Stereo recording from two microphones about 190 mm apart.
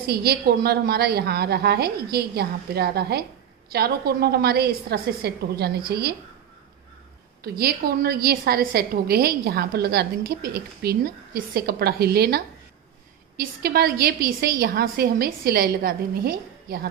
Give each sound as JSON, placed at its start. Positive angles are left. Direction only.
{"t": 0.0, "sound": "a woman's voice", "side_deg": -55}
{"t": 7.4, "sound": "a woman's voice", "side_deg": -55}